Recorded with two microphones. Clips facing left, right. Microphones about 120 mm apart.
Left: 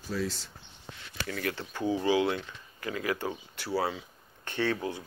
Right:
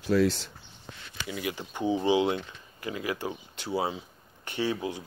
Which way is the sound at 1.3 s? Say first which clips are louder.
Even; 15° right (ahead or behind).